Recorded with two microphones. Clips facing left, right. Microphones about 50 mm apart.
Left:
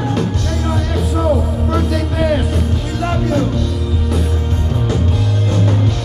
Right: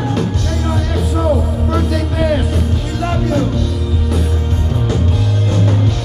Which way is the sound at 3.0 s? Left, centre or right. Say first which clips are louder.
Even; left.